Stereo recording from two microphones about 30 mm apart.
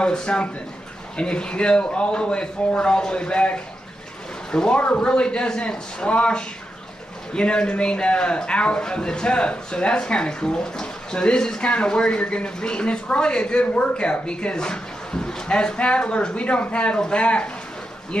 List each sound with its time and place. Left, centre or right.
0.0 s a man's voice: left
12.4 s a man's voice: left
15.9 s a man's voice: left